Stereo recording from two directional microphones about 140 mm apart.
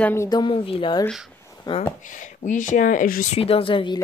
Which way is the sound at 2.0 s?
65° left (ahead or behind).